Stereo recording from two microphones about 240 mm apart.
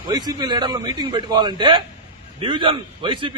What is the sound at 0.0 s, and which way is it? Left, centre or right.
A man's voice, centre.